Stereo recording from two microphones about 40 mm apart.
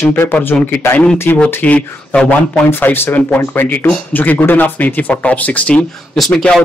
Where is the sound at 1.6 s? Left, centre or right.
Left.